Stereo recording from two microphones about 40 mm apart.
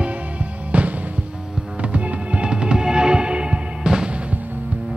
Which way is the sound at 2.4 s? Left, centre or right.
Right.